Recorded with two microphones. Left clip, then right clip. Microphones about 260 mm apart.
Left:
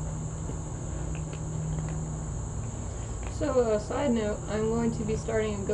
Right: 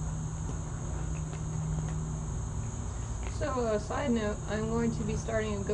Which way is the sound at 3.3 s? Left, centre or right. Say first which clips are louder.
Left 5 dB; right.